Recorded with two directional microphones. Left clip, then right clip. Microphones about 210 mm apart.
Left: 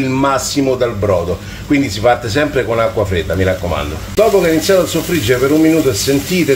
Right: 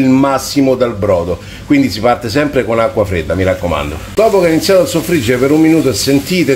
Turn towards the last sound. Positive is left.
turn(degrees=-35)  # may be behind; listen again after turning